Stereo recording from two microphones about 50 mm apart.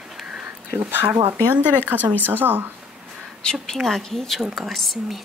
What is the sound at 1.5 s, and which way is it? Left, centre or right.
Speech, right.